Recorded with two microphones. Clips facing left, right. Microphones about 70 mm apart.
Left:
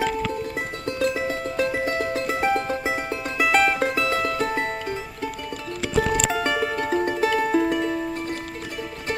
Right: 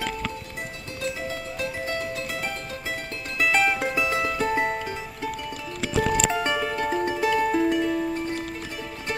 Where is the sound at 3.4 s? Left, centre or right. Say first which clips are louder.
Left 3 dB; centre.